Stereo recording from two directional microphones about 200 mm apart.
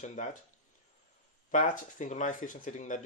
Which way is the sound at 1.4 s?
40° left (ahead or behind).